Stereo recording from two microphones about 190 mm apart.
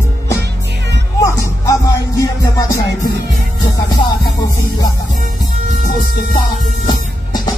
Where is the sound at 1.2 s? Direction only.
15° left (ahead or behind).